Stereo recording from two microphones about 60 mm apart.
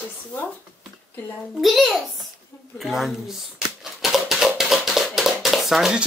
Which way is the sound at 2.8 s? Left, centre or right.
Centre.